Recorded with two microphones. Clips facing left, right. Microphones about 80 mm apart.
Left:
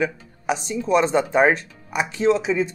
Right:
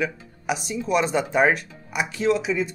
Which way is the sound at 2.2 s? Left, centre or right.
Left.